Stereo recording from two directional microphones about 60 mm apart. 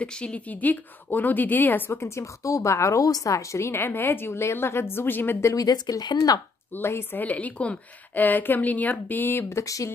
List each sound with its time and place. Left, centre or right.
0.0 s speech: left
2.0 s a woman's voice: left
5.6 s speech: left
6.7 s a woman's voice: left
9.5 s a sound: left